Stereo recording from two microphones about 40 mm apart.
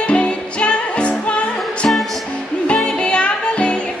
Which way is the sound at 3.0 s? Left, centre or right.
Left.